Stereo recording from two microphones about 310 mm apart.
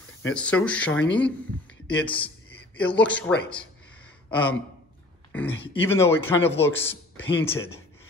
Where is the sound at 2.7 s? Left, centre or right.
Centre.